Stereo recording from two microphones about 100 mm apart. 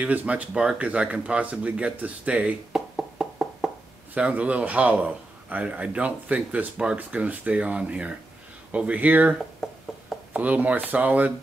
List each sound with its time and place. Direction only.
0.0 s a man's voice: 15° right (ahead or behind)
9.6 s a sound: 5° right (ahead or behind)
10.3 s a man's voice: 15° right (ahead or behind)